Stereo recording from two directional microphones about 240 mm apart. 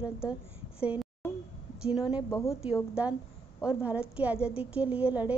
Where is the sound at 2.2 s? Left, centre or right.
Centre.